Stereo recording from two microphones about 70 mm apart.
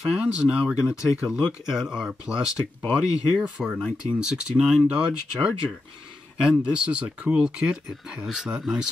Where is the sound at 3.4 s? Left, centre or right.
Centre.